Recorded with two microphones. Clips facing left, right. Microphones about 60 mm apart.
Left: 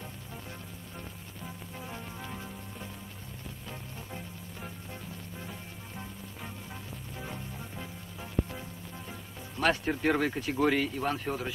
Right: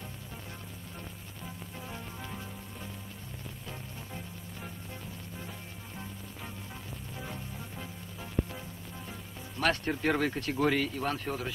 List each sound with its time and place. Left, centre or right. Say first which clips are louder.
1.8 s music: left 1 dB; centre
5.4 s music: left 1 dB; centre
9.6 s speech: left 2 dB; centre